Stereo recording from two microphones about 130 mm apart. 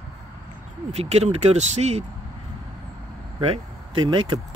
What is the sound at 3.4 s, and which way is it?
Speech, 45° right (ahead or behind).